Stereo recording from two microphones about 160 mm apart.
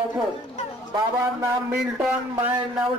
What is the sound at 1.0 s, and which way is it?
Speech, 15° right (ahead or behind).